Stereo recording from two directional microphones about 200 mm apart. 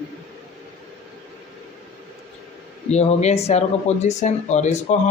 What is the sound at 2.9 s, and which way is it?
Speech, 35° left (ahead or behind).